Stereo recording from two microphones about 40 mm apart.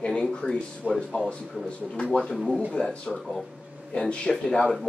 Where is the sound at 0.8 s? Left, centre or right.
Right.